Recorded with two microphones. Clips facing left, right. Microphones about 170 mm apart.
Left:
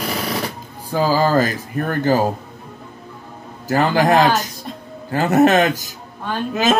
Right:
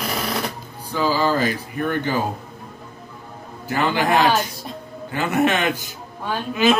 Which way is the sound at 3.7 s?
40° left (ahead or behind).